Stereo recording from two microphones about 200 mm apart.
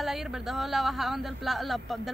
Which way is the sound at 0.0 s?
Centre (ahead or behind).